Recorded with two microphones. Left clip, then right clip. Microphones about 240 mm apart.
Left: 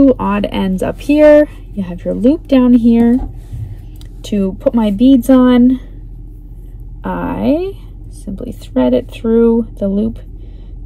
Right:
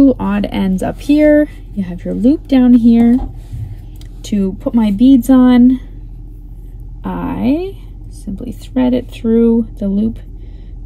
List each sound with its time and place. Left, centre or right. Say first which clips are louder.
0.0 s speech: left 1 dB; centre
4.3 s speech: left 3 dB; centre
7.0 s speech: left 2 dB; centre